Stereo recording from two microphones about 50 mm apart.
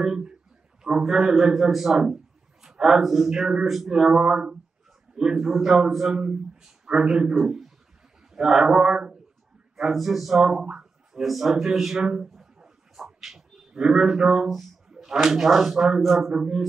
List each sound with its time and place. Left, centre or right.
0.0 s a man's voice: centre
4.0 s a man's voice: centre
5.3 s a man's voice: centre
9.8 s speech: centre
10.4 s a sound: centre
15.2 s a man's voice: centre